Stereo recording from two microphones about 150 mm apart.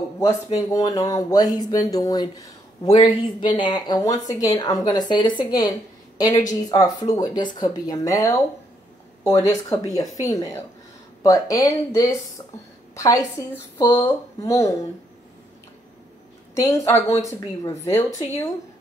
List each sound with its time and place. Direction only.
0.2 s speech: 25° left (ahead or behind)
9.7 s speech: 20° left (ahead or behind)
16.5 s speech: 20° left (ahead or behind)